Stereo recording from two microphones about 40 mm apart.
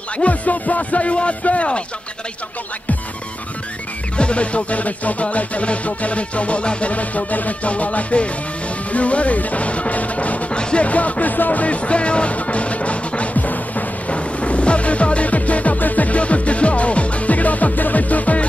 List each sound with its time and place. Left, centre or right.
0.2 s music: left
4.2 s music: left
10.5 s music: left
14.1 s music: left